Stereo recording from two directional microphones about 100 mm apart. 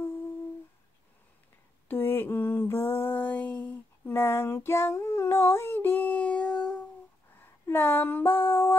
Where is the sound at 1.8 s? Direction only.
25° left (ahead or behind).